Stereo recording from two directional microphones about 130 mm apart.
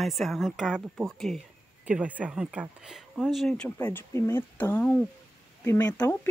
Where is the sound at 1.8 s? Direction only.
10° right (ahead or behind).